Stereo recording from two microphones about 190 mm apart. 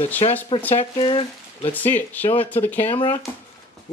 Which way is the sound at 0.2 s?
30° left (ahead or behind).